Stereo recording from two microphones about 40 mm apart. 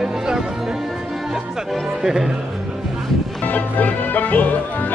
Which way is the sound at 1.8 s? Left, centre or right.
Centre.